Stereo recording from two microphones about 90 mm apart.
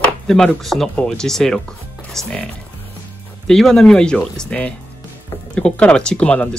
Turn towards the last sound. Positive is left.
turn(degrees=15)  # may be behind; listen again after turning